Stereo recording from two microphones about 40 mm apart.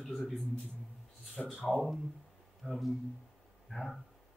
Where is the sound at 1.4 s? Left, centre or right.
Left.